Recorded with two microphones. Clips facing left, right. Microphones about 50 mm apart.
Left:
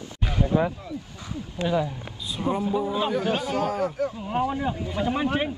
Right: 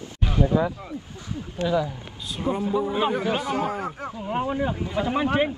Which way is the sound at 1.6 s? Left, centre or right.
Left.